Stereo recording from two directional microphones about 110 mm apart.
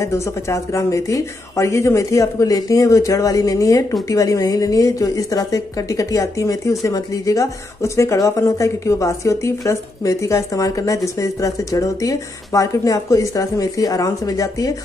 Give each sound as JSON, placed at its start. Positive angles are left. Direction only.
{"t": 0.0, "sound": "speech", "side_deg": 25}